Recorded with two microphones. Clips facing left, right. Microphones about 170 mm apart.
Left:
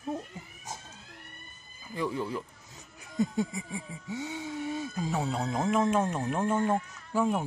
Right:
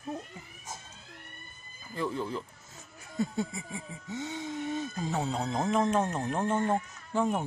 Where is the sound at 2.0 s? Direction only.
10° left (ahead or behind).